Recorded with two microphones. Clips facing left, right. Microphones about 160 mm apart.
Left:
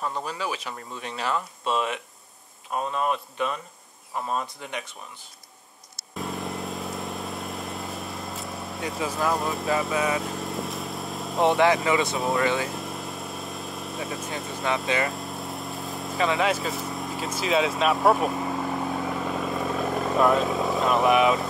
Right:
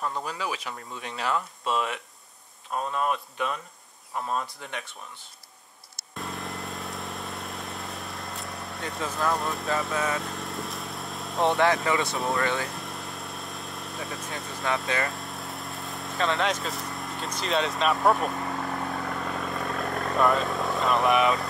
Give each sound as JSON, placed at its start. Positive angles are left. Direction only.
{"t": 0.0, "sound": "speech", "side_deg": 0}
{"t": 1.7, "sound": "speech", "side_deg": 20}
{"t": 2.7, "sound": "speech", "side_deg": 5}
{"t": 4.3, "sound": "speech", "side_deg": 10}
{"t": 6.1, "sound": "vehicle", "side_deg": 0}